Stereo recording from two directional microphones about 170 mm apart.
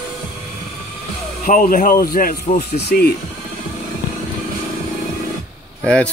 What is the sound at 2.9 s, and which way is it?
Speech, 65° left (ahead or behind).